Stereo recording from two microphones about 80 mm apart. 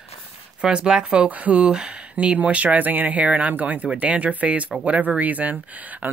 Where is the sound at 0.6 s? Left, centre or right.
Centre.